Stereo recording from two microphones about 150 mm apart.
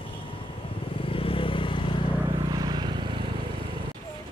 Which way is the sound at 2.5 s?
25° right (ahead or behind).